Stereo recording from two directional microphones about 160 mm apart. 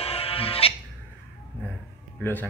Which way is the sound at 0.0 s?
40° left (ahead or behind).